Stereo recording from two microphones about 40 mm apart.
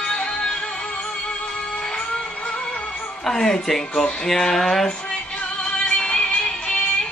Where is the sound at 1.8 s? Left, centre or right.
Left.